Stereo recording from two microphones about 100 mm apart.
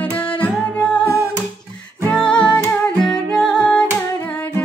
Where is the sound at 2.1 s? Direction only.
10° left (ahead or behind).